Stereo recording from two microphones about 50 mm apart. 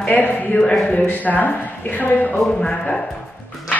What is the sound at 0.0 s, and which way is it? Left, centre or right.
Speech, left.